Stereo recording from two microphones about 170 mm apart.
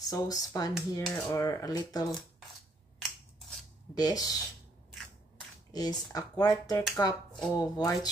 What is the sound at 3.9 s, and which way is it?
Speech, 20° left (ahead or behind).